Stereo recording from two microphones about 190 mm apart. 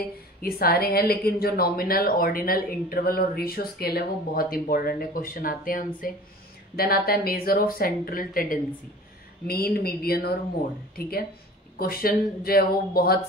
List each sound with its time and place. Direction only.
0.4 s a woman's voice: 50° left (ahead or behind)